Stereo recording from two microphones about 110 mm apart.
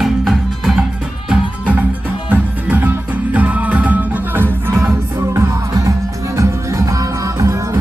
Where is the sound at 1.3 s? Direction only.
15° right (ahead or behind).